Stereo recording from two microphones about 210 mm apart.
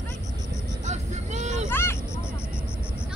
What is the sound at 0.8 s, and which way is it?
Vehicle, 35° right (ahead or behind).